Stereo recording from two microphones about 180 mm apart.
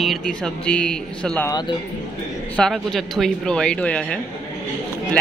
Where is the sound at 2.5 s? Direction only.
5° left (ahead or behind).